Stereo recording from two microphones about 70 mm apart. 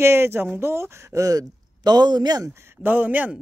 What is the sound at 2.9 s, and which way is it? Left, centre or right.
Speech, right.